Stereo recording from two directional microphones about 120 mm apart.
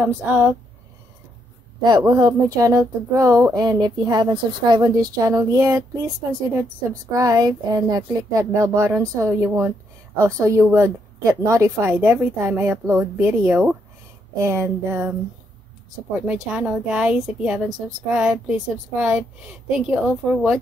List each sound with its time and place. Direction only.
0.0 s a woman's voice: 15° right (ahead or behind)
1.8 s a woman's voice: 35° right (ahead or behind)
7.1 s a woman's voice: 25° right (ahead or behind)
16.4 s a woman's voice: 5° right (ahead or behind)